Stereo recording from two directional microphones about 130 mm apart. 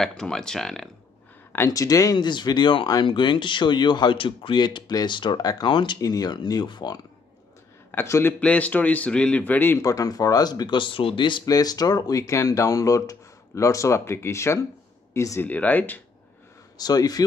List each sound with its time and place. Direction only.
0.0 s speech: 5° left (ahead or behind)
1.5 s speech: 20° left (ahead or behind)
7.9 s speech: 20° left (ahead or behind)
9.8 s speech: 30° left (ahead or behind)
16.7 s speech: 30° left (ahead or behind)